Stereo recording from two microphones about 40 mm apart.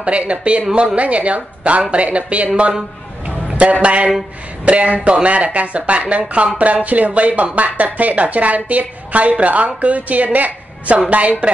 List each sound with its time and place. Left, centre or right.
0.0 s speech: right
3.8 s a woman's voice: right